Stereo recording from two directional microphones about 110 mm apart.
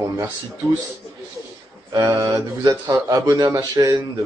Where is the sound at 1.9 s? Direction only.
30° right (ahead or behind).